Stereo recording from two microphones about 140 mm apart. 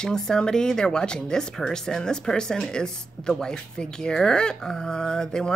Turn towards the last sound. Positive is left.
turn(degrees=5)  # may be behind; listen again after turning